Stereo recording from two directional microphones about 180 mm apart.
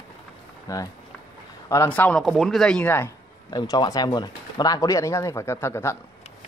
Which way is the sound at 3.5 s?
25° left (ahead or behind).